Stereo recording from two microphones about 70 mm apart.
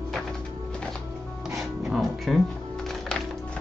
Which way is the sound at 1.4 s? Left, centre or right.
Centre.